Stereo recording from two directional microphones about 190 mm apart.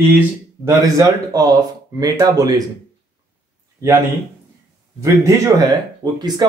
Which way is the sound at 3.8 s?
15° right (ahead or behind).